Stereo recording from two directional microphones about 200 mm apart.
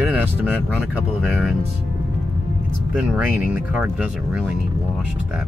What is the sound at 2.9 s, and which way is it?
Speech, 5° right (ahead or behind).